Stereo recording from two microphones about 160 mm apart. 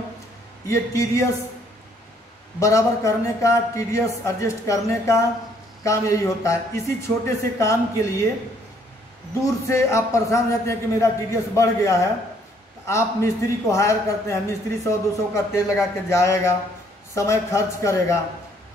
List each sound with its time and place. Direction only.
0.7 s a man's voice: 20° left (ahead or behind)
2.6 s a man's voice: 20° left (ahead or behind)
9.4 s a man's voice: 15° left (ahead or behind)